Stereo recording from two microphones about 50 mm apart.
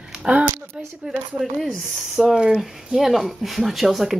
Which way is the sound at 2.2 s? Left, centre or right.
Centre.